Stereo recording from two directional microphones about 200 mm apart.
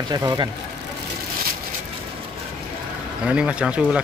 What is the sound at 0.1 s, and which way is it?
Speech, 20° right (ahead or behind).